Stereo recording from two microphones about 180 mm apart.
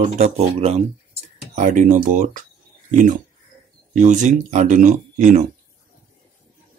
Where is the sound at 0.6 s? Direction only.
35° right (ahead or behind).